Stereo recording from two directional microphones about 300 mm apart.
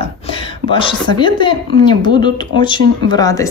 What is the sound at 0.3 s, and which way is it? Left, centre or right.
A woman's voice, centre.